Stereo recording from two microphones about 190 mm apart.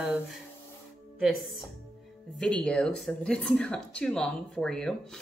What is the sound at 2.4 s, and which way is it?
A woman's voice, centre (ahead or behind).